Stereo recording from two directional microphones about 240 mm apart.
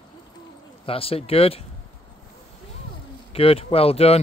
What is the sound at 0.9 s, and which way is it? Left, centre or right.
Speech, left.